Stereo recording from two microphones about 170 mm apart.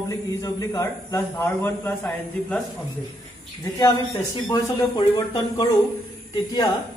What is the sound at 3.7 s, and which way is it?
Speech, 20° left (ahead or behind).